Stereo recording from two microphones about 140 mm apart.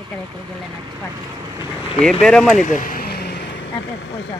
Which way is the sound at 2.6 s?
70° left (ahead or behind).